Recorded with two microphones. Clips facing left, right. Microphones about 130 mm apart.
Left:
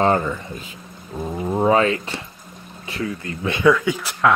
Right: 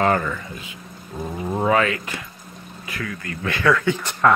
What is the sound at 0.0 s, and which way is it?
Speech, 25° left (ahead or behind).